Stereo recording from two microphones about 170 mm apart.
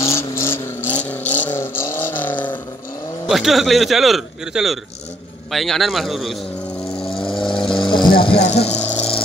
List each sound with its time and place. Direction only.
0.0 s vehicle: 15° left (ahead or behind)
3.3 s a man's voice: centre (ahead or behind)
7.3 s vehicle: 30° left (ahead or behind)
8.5 s speech: 40° left (ahead or behind)
8.7 s a sound: 5° left (ahead or behind)